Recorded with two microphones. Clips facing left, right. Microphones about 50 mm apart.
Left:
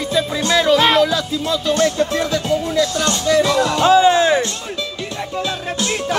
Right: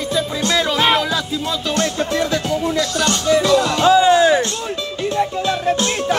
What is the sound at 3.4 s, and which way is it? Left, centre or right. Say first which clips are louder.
Music: right 1 dB; left.